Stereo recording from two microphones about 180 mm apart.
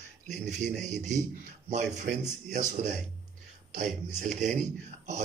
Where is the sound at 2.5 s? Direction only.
45° right (ahead or behind).